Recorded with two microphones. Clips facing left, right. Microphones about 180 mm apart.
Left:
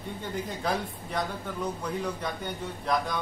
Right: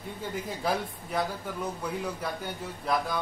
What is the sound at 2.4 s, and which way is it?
Speech, 5° right (ahead or behind).